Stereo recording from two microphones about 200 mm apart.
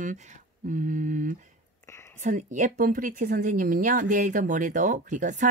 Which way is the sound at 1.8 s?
15° left (ahead or behind).